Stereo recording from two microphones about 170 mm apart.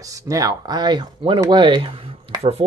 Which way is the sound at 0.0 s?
20° right (ahead or behind).